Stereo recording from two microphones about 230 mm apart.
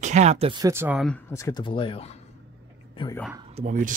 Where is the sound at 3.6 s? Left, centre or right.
Right.